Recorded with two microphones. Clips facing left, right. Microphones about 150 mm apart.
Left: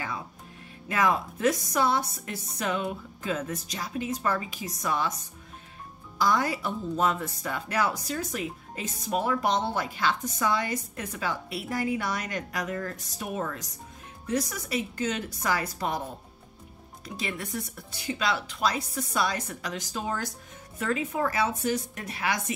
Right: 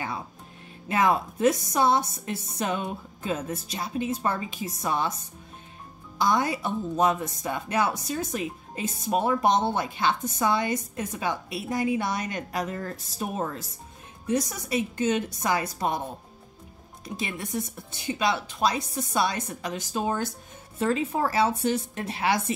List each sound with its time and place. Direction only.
0.8 s a woman's voice: 25° right (ahead or behind)
6.1 s a woman's voice: 20° right (ahead or behind)
17.0 s a woman's voice: 25° right (ahead or behind)